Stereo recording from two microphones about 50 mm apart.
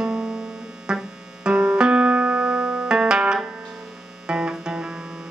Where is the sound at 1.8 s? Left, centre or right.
Centre.